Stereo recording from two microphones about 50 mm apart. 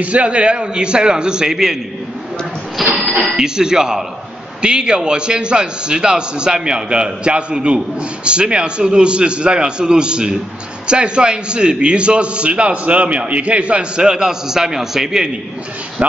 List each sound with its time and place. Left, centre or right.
0.0 s a man's voice: right
2.8 s speech: centre
3.3 s a man's voice: centre
16.0 s speech: right